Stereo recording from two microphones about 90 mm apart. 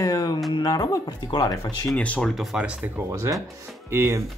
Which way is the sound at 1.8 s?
15° left (ahead or behind).